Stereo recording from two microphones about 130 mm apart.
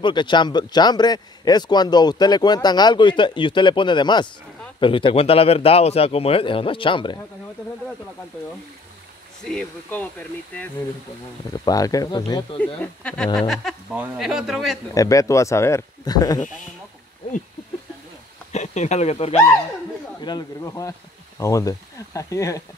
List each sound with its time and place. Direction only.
0.0 s a man's voice: 35° left (ahead or behind)
9.4 s a man's voice: 5° left (ahead or behind)
11.5 s speech: 30° left (ahead or behind)
12.5 s a man's voice: 10° left (ahead or behind)
15.0 s speech: 25° left (ahead or behind)
18.5 s speech: 60° left (ahead or behind)
20.2 s speech: 30° left (ahead or behind)